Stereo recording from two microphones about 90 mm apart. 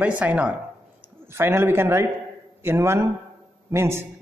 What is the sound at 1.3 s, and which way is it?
A man's voice, 30° right (ahead or behind).